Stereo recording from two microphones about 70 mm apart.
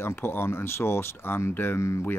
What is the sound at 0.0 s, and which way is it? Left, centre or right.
Speech, left.